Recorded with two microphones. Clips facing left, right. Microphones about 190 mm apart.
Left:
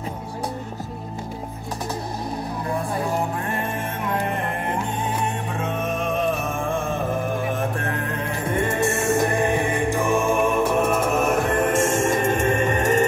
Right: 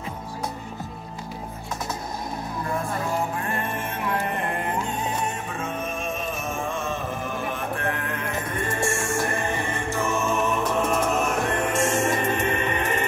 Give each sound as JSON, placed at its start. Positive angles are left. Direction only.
{"t": 5.6, "sound": "music", "side_deg": 65}
{"t": 8.5, "sound": "music", "side_deg": 20}
{"t": 11.1, "sound": "music", "side_deg": 50}